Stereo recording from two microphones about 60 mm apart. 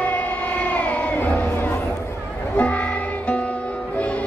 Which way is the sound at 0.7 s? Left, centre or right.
Left.